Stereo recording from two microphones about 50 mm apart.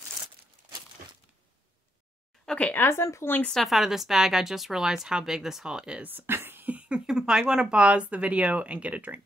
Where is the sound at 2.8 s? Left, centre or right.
Left.